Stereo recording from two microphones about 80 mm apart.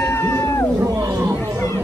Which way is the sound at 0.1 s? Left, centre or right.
Left.